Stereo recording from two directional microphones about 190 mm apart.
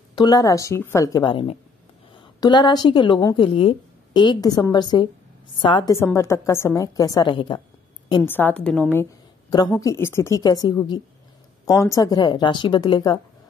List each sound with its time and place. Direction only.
0.1 s a woman's voice: 20° left (ahead or behind)
8.2 s a woman's voice: 10° left (ahead or behind)
9.5 s a woman's voice: 20° left (ahead or behind)